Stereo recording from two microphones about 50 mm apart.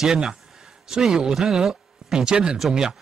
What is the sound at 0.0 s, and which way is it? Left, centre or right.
Speech, centre.